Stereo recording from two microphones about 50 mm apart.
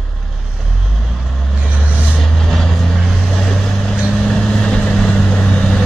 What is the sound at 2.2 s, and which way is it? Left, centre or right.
Vehicle, centre.